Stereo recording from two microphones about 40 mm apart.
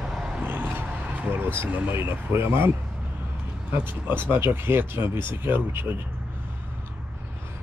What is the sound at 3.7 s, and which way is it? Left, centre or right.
Speech, right.